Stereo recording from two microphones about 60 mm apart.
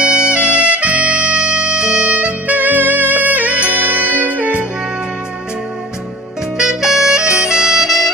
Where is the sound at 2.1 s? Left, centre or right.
Right.